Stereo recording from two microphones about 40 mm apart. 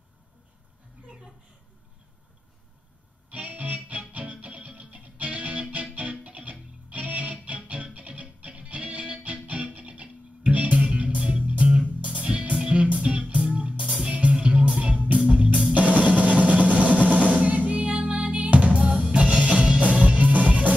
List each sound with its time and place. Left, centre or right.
3.3 s music: right